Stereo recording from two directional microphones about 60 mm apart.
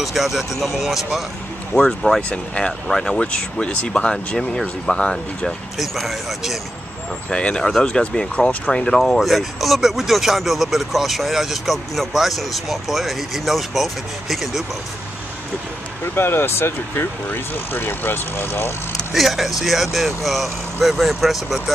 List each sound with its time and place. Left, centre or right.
0.0 s speech: centre
1.7 s speech: centre
5.8 s speech: centre
7.2 s speech: centre
16.2 s speech: left
19.1 s speech: centre